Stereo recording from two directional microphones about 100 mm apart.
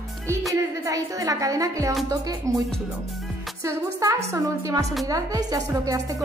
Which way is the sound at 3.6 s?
30° right (ahead or behind).